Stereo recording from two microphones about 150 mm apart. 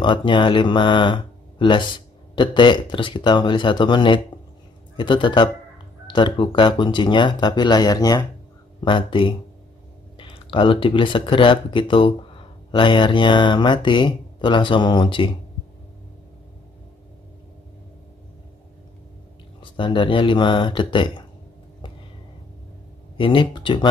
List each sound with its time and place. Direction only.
0.0 s speech: 35° left (ahead or behind)
19.6 s speech: 35° left (ahead or behind)
23.1 s speech: 35° left (ahead or behind)